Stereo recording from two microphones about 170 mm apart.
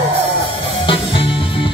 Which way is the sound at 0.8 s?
30° left (ahead or behind).